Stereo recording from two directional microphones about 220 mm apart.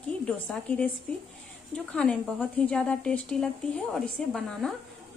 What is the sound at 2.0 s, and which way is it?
Speech, 5° left (ahead or behind).